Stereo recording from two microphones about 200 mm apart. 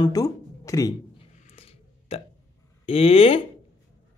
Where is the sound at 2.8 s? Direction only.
30° left (ahead or behind).